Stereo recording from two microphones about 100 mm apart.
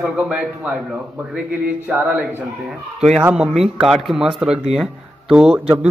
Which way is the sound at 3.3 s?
Centre (ahead or behind).